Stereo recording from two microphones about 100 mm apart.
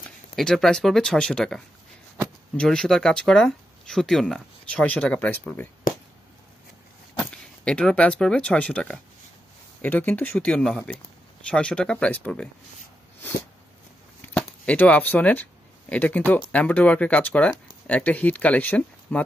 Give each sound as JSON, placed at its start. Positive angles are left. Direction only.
{"t": 0.4, "sound": "speech", "side_deg": 5}
{"t": 7.2, "sound": "speech", "side_deg": 10}
{"t": 14.2, "sound": "speech", "side_deg": 15}